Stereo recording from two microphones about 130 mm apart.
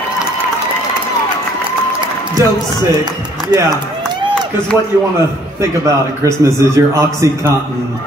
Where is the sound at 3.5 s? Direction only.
25° right (ahead or behind).